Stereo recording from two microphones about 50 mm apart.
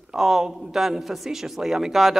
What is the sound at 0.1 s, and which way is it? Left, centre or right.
Speech, centre.